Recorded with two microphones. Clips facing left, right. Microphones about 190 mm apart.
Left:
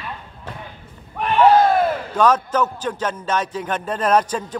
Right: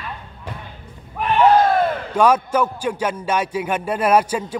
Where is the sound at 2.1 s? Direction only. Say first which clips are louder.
Right 2 dB; 10° right (ahead or behind).